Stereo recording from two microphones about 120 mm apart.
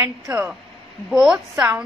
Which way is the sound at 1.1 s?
5° right (ahead or behind).